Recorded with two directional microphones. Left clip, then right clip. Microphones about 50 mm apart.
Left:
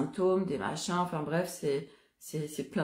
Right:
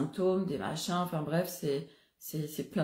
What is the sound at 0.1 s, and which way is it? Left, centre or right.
Speech, left.